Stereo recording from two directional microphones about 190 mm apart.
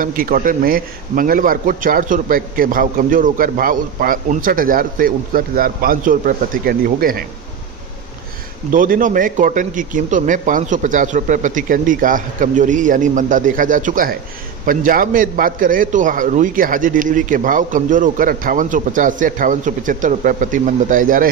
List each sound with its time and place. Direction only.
0.0 s a man's voice: 45° right (ahead or behind)
8.7 s a man's voice: 45° right (ahead or behind)